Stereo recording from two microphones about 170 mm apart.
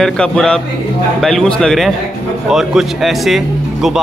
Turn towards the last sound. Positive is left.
turn(degrees=0)  # may be behind; listen again after turning